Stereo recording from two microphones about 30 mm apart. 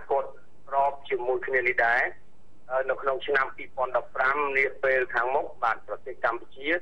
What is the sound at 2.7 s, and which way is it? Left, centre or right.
Speech, centre.